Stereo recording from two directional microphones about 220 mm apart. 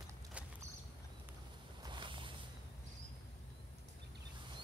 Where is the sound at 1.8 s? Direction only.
20° right (ahead or behind).